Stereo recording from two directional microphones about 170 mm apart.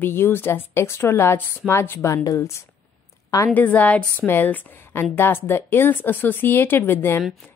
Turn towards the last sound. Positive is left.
turn(degrees=15)  # may be behind; listen again after turning